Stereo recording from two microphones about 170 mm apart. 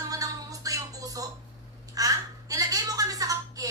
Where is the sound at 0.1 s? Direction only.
20° right (ahead or behind).